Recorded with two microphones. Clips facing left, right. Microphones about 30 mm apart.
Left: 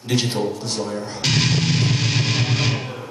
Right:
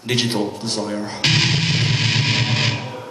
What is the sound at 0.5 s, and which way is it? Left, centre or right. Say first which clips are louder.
Music: right 2 dB; right.